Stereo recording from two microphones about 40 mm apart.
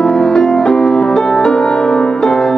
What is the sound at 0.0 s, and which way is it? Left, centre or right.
Music, centre.